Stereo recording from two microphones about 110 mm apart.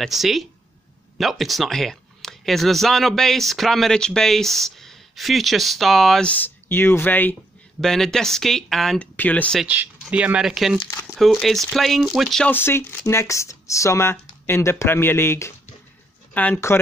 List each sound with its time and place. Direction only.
0.0 s speech: centre (ahead or behind)
6.3 s speech: 20° left (ahead or behind)
7.8 s speech: 5° left (ahead or behind)
10.1 s speech: 10° right (ahead or behind)
10.9 s speech: 20° left (ahead or behind)
11.1 s speech: centre (ahead or behind)
12.4 s speech: 20° left (ahead or behind)